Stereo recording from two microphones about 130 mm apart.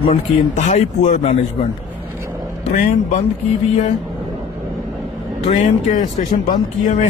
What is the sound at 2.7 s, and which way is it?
Speech, 70° left (ahead or behind).